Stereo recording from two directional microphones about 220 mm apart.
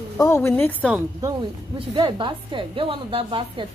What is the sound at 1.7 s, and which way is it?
A woman's voice, 20° right (ahead or behind).